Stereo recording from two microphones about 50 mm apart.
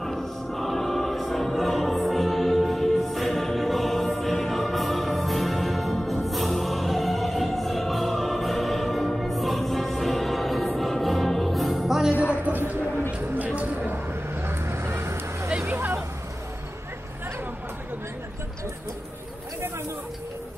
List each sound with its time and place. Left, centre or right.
0.0 s music: centre
12.4 s a sound: right
15.6 s vehicle: right